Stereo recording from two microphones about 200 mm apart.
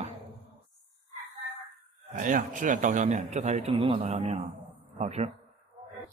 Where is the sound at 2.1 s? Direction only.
40° right (ahead or behind).